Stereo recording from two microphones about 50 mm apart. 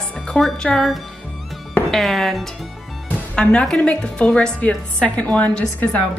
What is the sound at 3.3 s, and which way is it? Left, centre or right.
A woman's voice, left.